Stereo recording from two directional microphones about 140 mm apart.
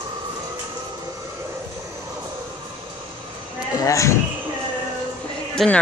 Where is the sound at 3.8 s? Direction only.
20° left (ahead or behind).